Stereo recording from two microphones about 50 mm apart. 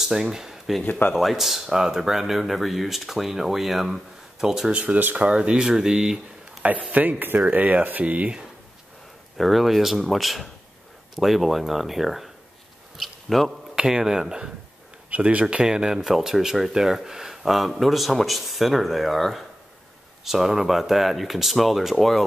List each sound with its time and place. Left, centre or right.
0.0 s speech: centre
0.8 s speech: left
1.1 s speech: centre
4.6 s speech: right
6.6 s speech: right
9.4 s speech: centre
12.9 s a sound: centre
13.7 s speech: centre
15.0 s speech: right
15.5 s speech: centre